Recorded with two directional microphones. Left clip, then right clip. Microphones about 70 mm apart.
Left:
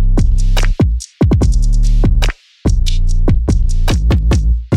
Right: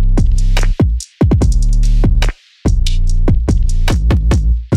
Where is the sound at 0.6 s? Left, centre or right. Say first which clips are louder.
Even; right.